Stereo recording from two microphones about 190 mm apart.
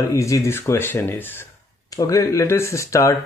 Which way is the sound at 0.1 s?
15° left (ahead or behind).